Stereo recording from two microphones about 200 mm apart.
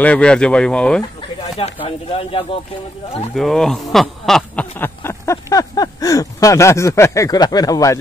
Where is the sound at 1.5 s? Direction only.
30° left (ahead or behind).